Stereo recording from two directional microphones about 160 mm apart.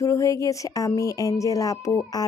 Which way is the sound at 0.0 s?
20° left (ahead or behind).